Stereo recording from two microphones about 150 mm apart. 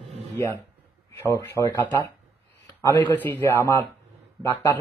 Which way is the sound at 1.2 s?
15° left (ahead or behind).